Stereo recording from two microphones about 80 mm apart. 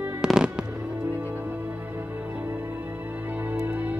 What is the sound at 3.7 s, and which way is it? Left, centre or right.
Music, right.